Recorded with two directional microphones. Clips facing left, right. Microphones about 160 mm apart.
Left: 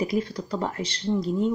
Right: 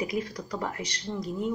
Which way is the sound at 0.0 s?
30° left (ahead or behind).